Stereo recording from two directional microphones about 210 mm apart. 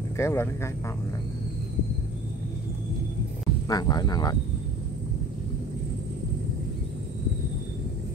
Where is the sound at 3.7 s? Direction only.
20° left (ahead or behind).